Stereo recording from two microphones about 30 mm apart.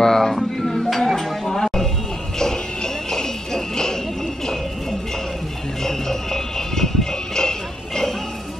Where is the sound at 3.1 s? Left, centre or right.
Centre.